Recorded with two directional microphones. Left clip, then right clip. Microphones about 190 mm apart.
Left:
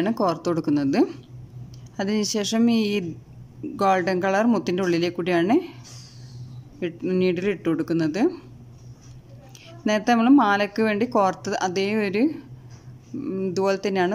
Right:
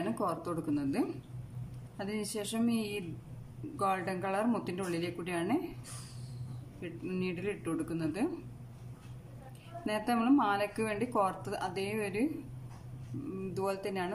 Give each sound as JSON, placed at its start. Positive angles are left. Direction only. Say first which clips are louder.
{"t": 0.0, "sound": "speech", "louder": "left 12 dB", "side_deg": 50}
{"t": 6.8, "sound": "speech", "louder": "left 15 dB", "side_deg": 50}
{"t": 9.8, "sound": "speech", "louder": "left 11 dB", "side_deg": 50}
{"t": 13.4, "sound": "speech", "louder": "left 13 dB", "side_deg": 50}